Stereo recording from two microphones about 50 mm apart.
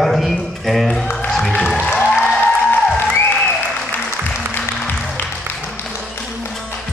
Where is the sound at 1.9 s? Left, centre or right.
Left.